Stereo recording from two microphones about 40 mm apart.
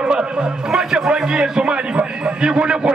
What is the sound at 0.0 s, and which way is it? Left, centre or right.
A man's voice, right.